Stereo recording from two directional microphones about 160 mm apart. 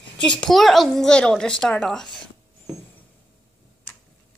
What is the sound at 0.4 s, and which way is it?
A child's voice, centre (ahead or behind).